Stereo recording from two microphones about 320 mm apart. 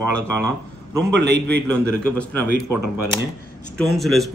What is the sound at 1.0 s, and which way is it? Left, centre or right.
Speech, right.